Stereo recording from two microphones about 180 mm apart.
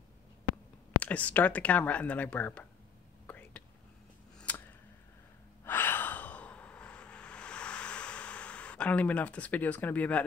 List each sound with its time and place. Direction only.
1.0 s speech: 10° left (ahead or behind)
3.3 s whispering: 10° left (ahead or behind)
4.4 s a sound: 10° left (ahead or behind)
5.7 s gasp: 10° left (ahead or behind)